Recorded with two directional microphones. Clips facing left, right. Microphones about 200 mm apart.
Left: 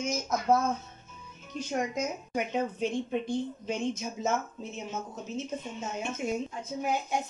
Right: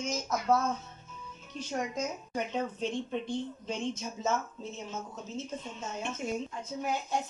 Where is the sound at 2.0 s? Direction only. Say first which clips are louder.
Left 2 dB; 10° left (ahead or behind).